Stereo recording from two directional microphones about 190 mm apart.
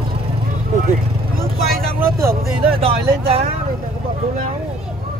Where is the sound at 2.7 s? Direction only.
30° right (ahead or behind).